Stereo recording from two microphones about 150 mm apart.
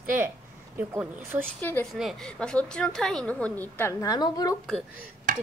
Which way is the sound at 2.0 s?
Centre (ahead or behind).